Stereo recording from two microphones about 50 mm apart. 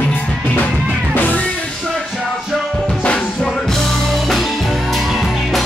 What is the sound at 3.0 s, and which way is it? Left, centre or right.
Music, centre.